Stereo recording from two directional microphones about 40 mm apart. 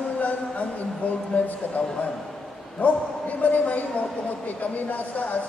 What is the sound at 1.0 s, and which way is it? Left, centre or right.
Speech, left.